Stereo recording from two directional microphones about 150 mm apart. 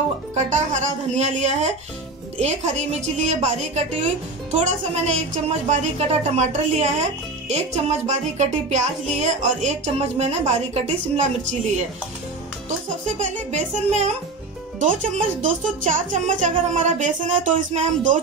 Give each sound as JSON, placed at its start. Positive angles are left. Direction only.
{"t": 0.6, "sound": "music", "side_deg": -50}
{"t": 12.6, "sound": "music", "side_deg": -55}
{"t": 14.8, "sound": "speech", "side_deg": -55}